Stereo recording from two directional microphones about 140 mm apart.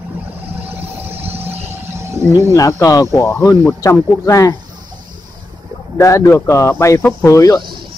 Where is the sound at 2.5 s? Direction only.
25° left (ahead or behind).